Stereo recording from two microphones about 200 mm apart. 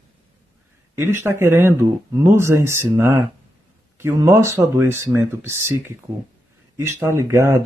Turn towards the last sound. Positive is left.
turn(degrees=-15)  # may be behind; listen again after turning